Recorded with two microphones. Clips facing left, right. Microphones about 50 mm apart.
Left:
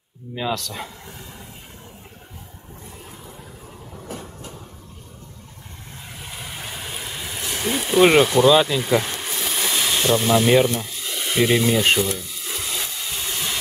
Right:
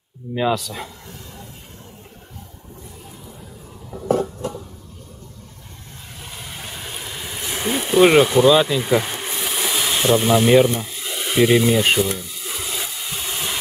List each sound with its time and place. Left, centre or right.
0.3 s speech: centre
4.1 s a sound: right
6.2 s vehicle: centre
7.4 s insect: centre
8.3 s speech: centre
8.8 s a sound: centre